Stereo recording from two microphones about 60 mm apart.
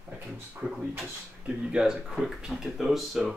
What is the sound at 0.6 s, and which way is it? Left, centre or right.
Speech, centre.